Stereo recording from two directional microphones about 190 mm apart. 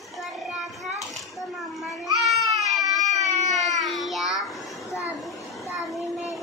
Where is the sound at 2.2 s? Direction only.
Centre (ahead or behind).